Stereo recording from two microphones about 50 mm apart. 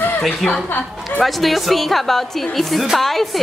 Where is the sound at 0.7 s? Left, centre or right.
Left.